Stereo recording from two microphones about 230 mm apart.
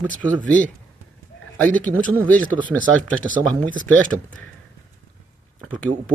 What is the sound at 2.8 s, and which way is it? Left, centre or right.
Speech, right.